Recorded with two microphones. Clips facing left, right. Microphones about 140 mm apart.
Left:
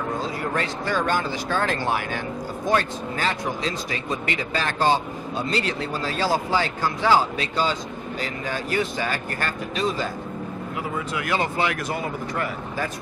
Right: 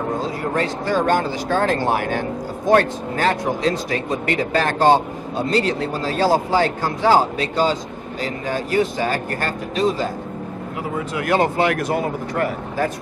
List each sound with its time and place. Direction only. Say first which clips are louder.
0.0 s a sound: right 4 dB; 35° right (ahead or behind)
1.0 s speech: right 5 dB; 50° right (ahead or behind)
2.7 s speech: right 7 dB; 55° right (ahead or behind); by 10.1 s 35° right (ahead or behind)
11.0 s speech: right 7 dB; 50° right (ahead or behind)